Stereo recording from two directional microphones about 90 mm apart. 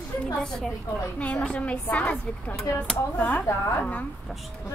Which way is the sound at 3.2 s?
20° left (ahead or behind).